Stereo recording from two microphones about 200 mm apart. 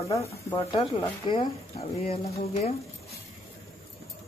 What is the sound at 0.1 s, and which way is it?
Speech, 15° left (ahead or behind).